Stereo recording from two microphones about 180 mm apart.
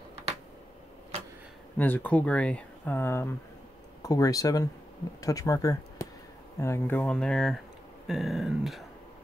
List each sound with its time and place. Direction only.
1.8 s speech: 10° left (ahead or behind)